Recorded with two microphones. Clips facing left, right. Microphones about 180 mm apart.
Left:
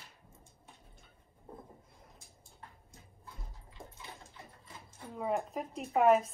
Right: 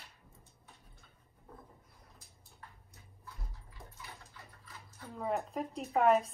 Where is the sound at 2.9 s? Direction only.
25° left (ahead or behind).